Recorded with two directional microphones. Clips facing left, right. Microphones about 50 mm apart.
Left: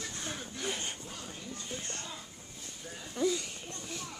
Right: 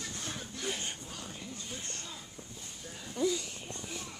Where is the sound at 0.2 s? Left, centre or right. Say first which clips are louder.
Left 2 dB; centre.